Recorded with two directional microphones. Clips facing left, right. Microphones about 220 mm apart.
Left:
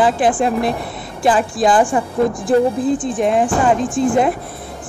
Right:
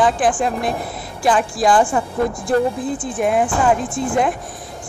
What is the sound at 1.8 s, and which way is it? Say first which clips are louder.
Speech: left 2 dB; 15° left (ahead or behind).